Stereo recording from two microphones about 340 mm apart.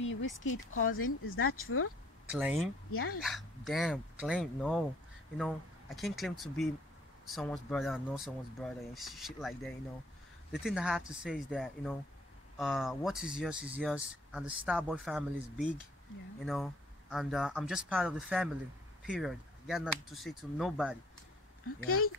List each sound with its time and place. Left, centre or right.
0.0 s a sound: left
0.4 s speech: left
2.3 s speech: centre
2.9 s speech: left
3.2 s speech: centre
5.9 s speech: centre
21.6 s speech: left